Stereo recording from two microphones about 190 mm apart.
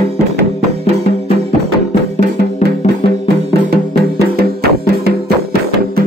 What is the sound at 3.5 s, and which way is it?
Music, 60° right (ahead or behind).